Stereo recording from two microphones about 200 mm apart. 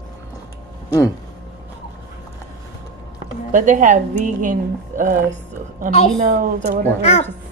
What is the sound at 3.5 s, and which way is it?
A woman's voice, 40° right (ahead or behind).